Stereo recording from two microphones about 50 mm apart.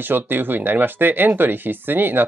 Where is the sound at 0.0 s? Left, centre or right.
Right.